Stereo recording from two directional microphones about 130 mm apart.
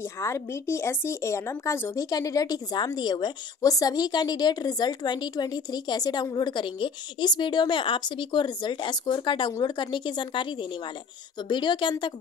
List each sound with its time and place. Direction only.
0.0 s a woman's voice: 20° left (ahead or behind); by 12.1 s 35° left (ahead or behind)